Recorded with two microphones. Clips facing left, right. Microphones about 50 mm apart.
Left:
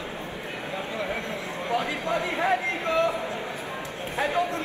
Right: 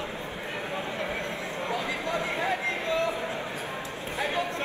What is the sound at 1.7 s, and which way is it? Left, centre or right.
Speech, left.